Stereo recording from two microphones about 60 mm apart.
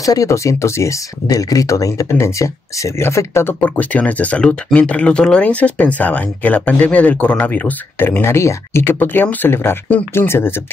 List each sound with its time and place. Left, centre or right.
0.0 s speech: left
2.0 s speech: left
3.6 s speech: left
8.2 s speech: left
8.8 s speech: left